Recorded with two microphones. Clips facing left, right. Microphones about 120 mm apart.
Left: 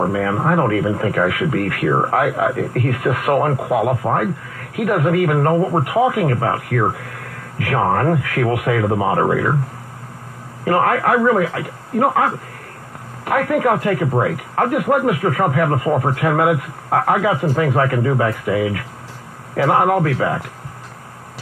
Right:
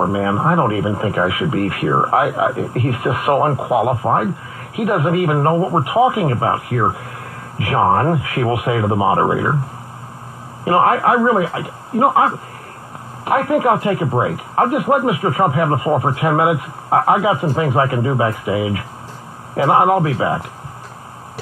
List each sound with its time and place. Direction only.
0.0 s speech: 20° right (ahead or behind)
10.6 s speech: 20° right (ahead or behind)